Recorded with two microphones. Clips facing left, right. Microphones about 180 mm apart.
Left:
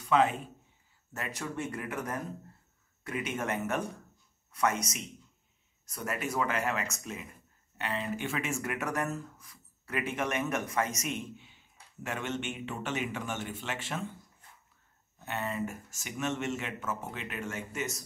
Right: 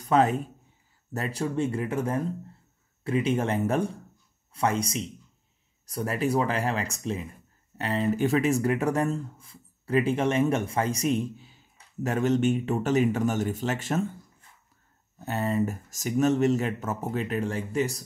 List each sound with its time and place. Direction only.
0.0 s speech: 40° right (ahead or behind)
15.1 s speech: 40° right (ahead or behind)